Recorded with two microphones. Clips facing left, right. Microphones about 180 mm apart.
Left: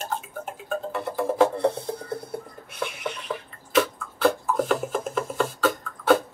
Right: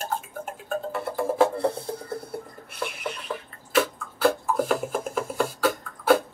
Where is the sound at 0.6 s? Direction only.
5° right (ahead or behind).